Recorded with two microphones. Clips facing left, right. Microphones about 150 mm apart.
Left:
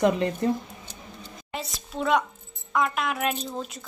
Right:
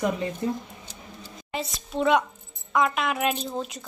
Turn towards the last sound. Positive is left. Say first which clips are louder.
# right 2 dB
turn(degrees=0)  # may be behind; listen again after turning